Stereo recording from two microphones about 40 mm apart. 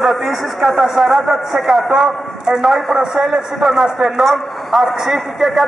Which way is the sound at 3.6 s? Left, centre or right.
Centre.